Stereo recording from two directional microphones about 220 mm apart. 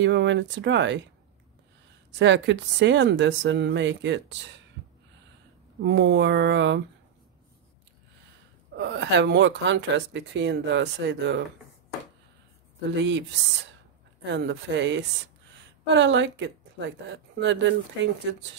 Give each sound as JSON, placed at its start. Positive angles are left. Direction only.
{"t": 0.0, "sound": "speech", "side_deg": -55}
{"t": 2.1, "sound": "speech", "side_deg": -55}
{"t": 5.8, "sound": "speech", "side_deg": -55}
{"t": 8.7, "sound": "speech", "side_deg": -55}
{"t": 12.9, "sound": "speech", "side_deg": -55}
{"t": 14.2, "sound": "speech", "side_deg": -55}